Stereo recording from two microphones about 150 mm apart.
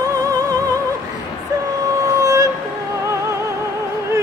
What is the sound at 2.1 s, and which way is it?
Music, 20° right (ahead or behind).